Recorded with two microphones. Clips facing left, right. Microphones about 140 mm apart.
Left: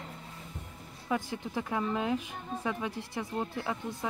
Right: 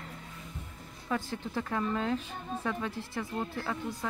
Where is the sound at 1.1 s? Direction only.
15° left (ahead or behind).